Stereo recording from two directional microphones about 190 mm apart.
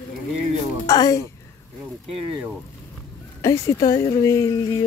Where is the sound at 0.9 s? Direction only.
20° left (ahead or behind).